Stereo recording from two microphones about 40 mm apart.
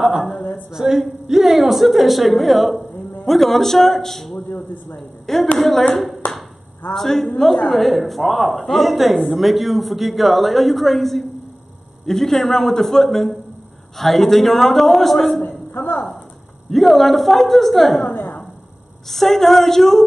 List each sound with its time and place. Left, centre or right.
0.4 s a woman's voice: left
0.7 s a man's voice: centre
4.5 s speech: left
5.2 s a woman's voice: centre
16.7 s speech: centre
18.0 s a woman's voice: left
19.0 s a man's voice: centre